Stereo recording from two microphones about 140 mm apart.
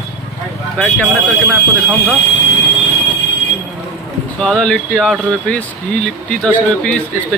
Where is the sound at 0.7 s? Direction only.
5° left (ahead or behind).